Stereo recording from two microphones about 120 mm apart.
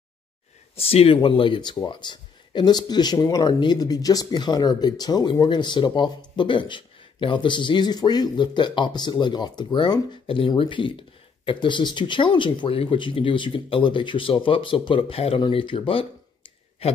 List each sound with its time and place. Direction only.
0.7 s speech: 55° left (ahead or behind); by 10.0 s 35° left (ahead or behind)
10.2 s speech: 45° left (ahead or behind)